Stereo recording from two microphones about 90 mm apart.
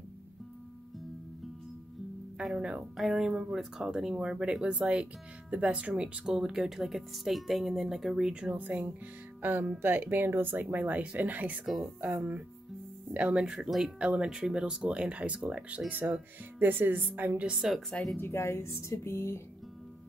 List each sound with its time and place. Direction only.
2.4 s speech: 10° right (ahead or behind)
11.6 s speech: centre (ahead or behind)
12.0 s speech: 20° right (ahead or behind); by 17.8 s 5° right (ahead or behind)
18.1 s speech: 25° left (ahead or behind)